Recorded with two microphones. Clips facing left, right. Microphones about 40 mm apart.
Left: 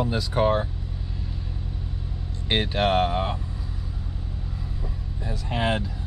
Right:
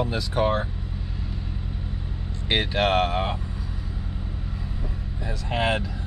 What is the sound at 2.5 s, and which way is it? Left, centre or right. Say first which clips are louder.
Speech: even; right.